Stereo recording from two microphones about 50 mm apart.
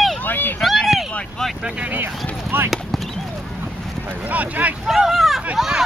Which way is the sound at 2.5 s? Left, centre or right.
Right.